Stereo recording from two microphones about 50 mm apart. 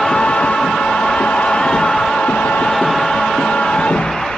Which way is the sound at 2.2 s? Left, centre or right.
Left.